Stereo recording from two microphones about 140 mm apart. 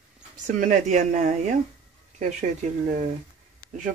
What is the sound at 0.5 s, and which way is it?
Speech, 60° right (ahead or behind).